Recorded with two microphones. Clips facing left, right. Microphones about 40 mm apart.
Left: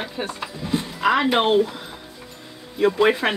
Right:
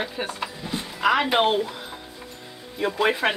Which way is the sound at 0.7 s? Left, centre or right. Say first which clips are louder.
Left 2 dB; centre.